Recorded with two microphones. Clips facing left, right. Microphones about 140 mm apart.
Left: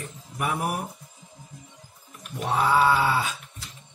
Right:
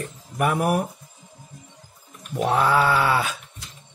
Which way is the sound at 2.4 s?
75° right (ahead or behind).